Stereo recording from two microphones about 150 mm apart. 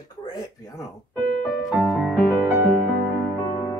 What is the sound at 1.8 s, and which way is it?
Music, centre (ahead or behind).